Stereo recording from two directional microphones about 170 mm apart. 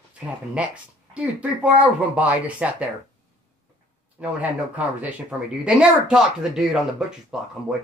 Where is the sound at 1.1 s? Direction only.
5° right (ahead or behind).